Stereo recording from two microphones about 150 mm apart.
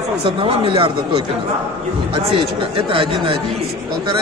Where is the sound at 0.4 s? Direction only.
35° right (ahead or behind).